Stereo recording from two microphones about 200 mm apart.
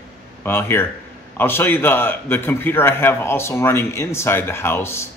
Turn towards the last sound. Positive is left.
turn(degrees=10)  # may be behind; listen again after turning